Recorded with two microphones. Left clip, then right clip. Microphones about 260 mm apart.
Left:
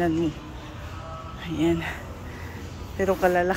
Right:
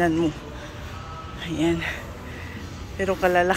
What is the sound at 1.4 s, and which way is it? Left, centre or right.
Speech, centre.